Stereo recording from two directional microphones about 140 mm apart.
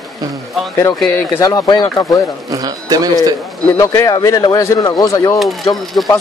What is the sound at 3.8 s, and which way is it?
Speech, 25° left (ahead or behind).